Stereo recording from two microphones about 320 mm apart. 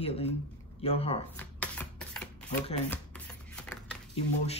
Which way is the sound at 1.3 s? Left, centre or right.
Centre.